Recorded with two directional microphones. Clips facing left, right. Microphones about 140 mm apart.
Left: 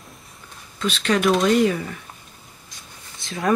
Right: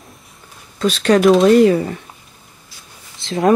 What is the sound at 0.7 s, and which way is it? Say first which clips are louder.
Speech: right 8 dB; 40° right (ahead or behind).